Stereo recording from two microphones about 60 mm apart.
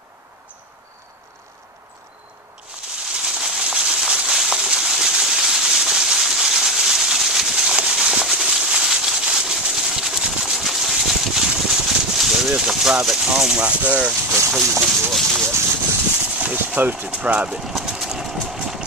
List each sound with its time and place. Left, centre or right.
3.2 s a sound: centre
15.0 s speech: centre
15.4 s vehicle: right
16.3 s a sound: right
17.1 s speech: centre
17.5 s vehicle: centre